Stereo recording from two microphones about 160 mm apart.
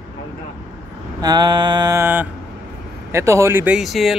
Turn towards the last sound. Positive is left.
turn(degrees=0)  # may be behind; listen again after turning